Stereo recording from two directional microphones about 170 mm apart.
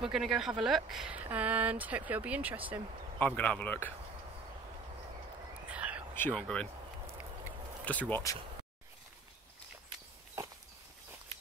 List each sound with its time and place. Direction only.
0.0 s speech: 5° right (ahead or behind)
3.2 s speech: 10° left (ahead or behind)
5.7 s whispering: 10° right (ahead or behind)
6.3 s speech: 5° left (ahead or behind)
7.8 s speech: 10° left (ahead or behind)